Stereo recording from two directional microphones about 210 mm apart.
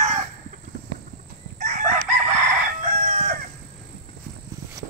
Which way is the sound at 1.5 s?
35° right (ahead or behind).